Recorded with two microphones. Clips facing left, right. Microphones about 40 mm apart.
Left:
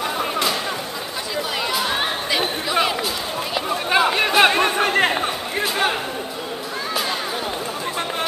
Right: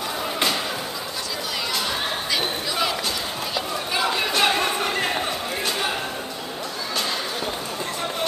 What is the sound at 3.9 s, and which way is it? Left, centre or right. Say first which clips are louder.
Chatter: left 6 dB; left.